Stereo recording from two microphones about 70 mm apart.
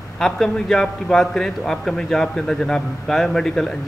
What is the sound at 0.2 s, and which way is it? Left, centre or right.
A man's voice, centre.